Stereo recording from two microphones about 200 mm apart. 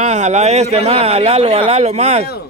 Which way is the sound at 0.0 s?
35° right (ahead or behind).